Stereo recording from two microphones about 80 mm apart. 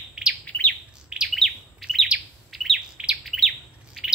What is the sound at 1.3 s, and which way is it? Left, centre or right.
Chirp, centre.